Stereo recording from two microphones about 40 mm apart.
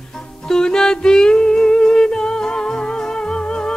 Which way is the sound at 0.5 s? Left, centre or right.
Centre.